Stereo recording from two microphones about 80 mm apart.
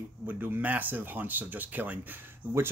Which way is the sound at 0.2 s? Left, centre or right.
Right.